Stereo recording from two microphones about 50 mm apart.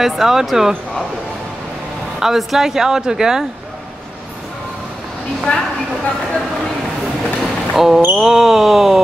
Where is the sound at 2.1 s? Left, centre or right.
Centre.